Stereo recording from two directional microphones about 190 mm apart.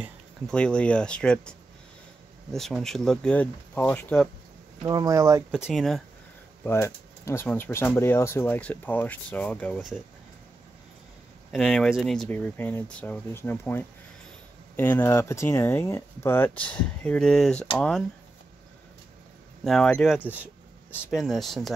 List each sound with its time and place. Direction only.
0.5 s speech: 5° left (ahead or behind)
2.5 s speech: centre (ahead or behind)
4.8 s speech: 20° right (ahead or behind)
5.5 s speech: centre (ahead or behind)
6.6 s speech: 15° left (ahead or behind)
11.5 s speech: centre (ahead or behind)
19.6 s speech: centre (ahead or behind)